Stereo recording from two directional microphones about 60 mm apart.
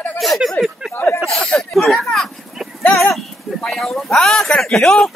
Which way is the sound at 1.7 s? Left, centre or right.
Centre.